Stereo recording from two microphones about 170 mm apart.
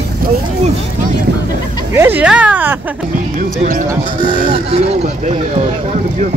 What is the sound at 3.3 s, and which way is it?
Speech, 50° right (ahead or behind).